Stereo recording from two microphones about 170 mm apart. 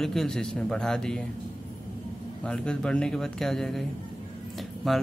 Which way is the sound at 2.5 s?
5° left (ahead or behind).